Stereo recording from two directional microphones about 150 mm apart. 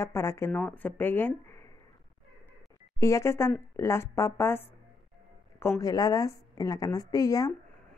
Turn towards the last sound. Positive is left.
turn(degrees=25)  # may be behind; listen again after turning